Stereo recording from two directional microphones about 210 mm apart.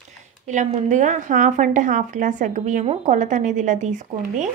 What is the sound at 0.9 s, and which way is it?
A woman's voice, 35° right (ahead or behind).